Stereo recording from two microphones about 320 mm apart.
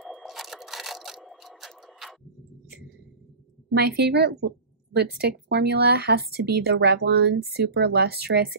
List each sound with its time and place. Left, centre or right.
0.0 s camera: centre
3.7 s speech: right